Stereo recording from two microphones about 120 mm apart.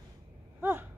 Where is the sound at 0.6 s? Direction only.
15° right (ahead or behind).